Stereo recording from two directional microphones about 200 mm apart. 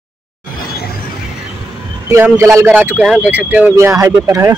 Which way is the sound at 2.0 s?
15° right (ahead or behind).